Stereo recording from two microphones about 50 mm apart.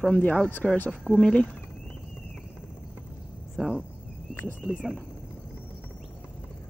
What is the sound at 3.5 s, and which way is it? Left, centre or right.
Speech, centre.